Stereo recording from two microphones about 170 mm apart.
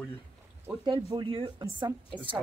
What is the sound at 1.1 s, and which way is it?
Speech, 30° right (ahead or behind).